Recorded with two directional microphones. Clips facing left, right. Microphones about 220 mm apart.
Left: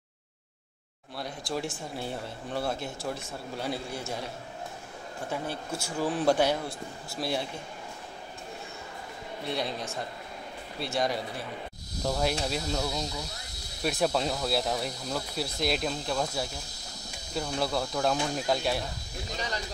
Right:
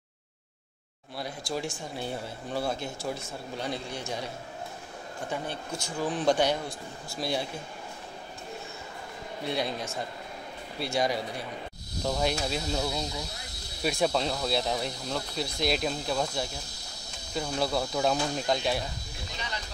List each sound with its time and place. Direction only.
1.1 s speech: centre (ahead or behind)
5.3 s speech: 5° left (ahead or behind)
9.5 s speech: centre (ahead or behind)
19.3 s snake: 40° left (ahead or behind)